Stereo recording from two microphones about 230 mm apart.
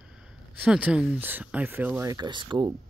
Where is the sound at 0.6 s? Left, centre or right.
Centre.